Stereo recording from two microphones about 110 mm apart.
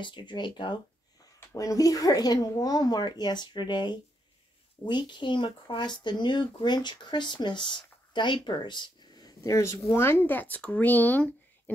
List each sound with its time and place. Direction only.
0.0 s speech: 45° left (ahead or behind)
1.5 s speech: 30° left (ahead or behind); by 11.7 s 15° left (ahead or behind)